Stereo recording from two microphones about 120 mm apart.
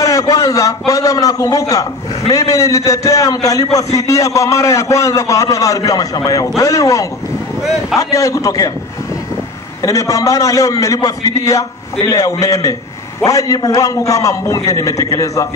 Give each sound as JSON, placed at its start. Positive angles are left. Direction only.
{"t": 0.0, "sound": "a man's voice", "side_deg": 30}
{"t": 9.8, "sound": "a man's voice", "side_deg": 25}